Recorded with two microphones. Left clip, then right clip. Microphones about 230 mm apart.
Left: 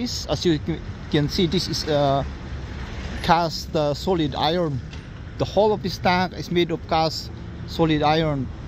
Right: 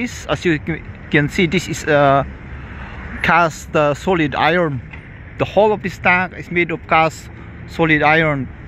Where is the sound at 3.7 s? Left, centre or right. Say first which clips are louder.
Right 7 dB; centre.